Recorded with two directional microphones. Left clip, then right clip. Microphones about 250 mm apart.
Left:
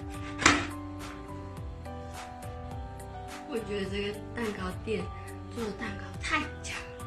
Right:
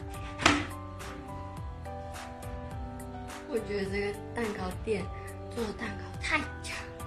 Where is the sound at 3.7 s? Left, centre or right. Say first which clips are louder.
Right 1 dB; centre.